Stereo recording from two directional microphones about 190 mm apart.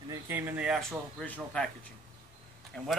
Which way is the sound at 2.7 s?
5° left (ahead or behind).